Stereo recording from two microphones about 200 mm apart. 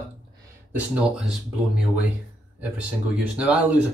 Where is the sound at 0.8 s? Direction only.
5° right (ahead or behind).